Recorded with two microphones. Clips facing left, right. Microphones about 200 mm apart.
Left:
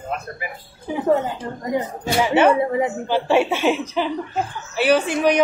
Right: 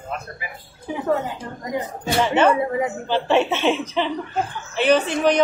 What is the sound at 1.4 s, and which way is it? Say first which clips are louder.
Speech: left 4 dB; 35° left (ahead or behind).